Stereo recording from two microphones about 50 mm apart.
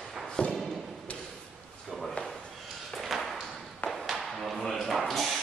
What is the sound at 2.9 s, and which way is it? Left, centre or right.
Ping, centre.